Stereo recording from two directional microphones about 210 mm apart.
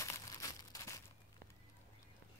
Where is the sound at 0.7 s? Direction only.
15° left (ahead or behind).